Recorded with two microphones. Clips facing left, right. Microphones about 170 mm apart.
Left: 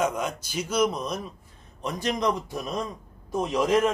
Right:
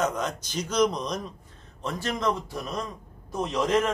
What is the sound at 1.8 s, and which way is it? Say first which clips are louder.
Speech: left 2 dB; 15° left (ahead or behind).